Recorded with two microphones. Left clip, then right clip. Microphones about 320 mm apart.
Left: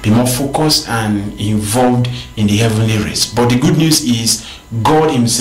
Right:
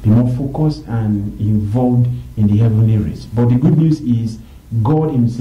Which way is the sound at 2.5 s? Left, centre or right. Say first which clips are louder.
Left 6 dB; centre.